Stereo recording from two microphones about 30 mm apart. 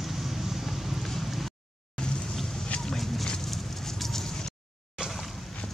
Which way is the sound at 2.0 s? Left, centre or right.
Left.